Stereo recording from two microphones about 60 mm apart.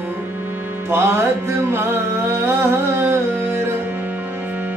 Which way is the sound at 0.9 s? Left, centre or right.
Right.